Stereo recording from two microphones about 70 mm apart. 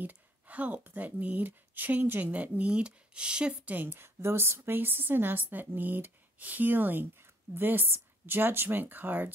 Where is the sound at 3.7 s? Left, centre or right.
Right.